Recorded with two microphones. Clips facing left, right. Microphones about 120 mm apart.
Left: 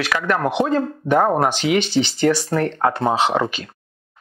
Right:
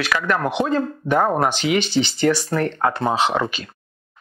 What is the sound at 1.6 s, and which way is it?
Speech, 60° left (ahead or behind).